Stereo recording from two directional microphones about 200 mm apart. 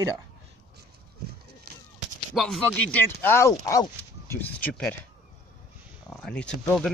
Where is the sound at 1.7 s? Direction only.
50° right (ahead or behind).